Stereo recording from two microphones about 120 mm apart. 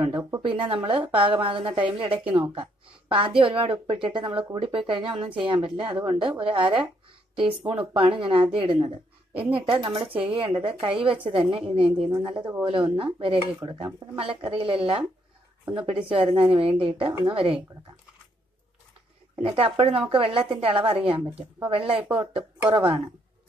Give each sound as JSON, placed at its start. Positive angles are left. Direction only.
{"t": 0.5, "sound": "a woman's voice", "side_deg": -50}
{"t": 19.4, "sound": "a woman's voice", "side_deg": -50}